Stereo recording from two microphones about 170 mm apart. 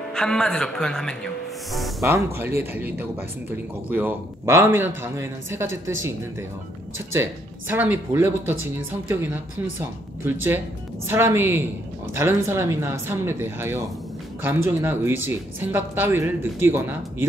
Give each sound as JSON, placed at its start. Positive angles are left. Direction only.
{"t": 0.1, "sound": "a man's voice", "side_deg": 5}
{"t": 2.0, "sound": "speech", "side_deg": -15}